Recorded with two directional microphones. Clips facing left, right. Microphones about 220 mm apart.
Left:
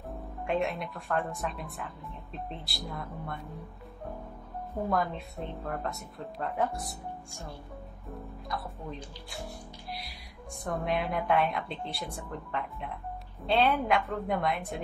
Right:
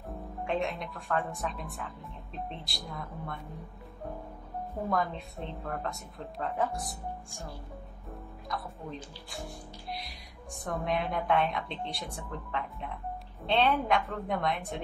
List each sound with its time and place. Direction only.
0.5 s a woman's voice: centre (ahead or behind)
4.8 s a woman's voice: centre (ahead or behind)
10.6 s a woman's voice: centre (ahead or behind)